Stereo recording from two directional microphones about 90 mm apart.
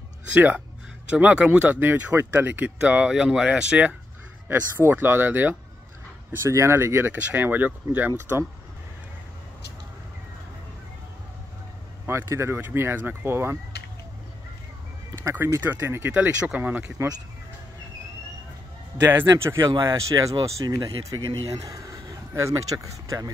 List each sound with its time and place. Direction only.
0.3 s speech: 20° right (ahead or behind)
4.5 s speech: 25° right (ahead or behind)
12.1 s speech: 30° right (ahead or behind)
15.3 s speech: 25° right (ahead or behind)
19.3 s speech: 30° right (ahead or behind)